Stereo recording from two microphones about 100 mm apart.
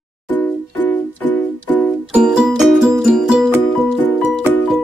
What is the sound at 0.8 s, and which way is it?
Music, 20° left (ahead or behind).